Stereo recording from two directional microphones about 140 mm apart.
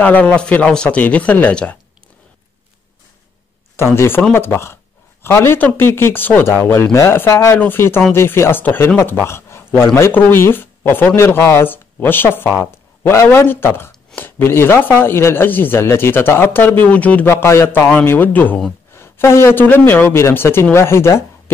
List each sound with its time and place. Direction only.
0.0 s speech: 10° left (ahead or behind)
3.7 s speech: 20° left (ahead or behind)